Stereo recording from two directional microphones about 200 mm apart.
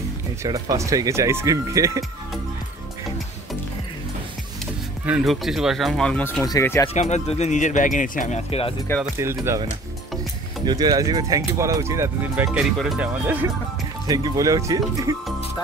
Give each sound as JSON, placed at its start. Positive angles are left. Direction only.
{"t": 0.4, "sound": "speech", "side_deg": -15}
{"t": 5.0, "sound": "speech", "side_deg": -5}
{"t": 6.9, "sound": "speech", "side_deg": 35}
{"t": 9.2, "sound": "speech", "side_deg": -15}
{"t": 14.0, "sound": "speech", "side_deg": -20}